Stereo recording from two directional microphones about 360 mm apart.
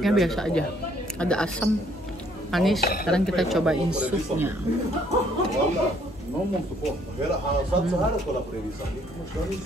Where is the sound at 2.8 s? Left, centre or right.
Left.